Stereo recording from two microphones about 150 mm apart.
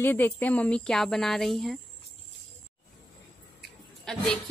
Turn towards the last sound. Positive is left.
turn(degrees=5)  # may be behind; listen again after turning